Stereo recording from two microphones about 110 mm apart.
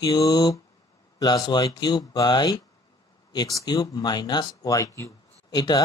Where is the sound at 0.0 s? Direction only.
35° left (ahead or behind).